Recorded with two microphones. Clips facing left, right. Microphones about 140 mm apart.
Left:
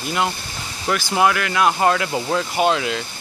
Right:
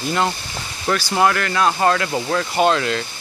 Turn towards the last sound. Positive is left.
turn(degrees=10)  # may be behind; listen again after turning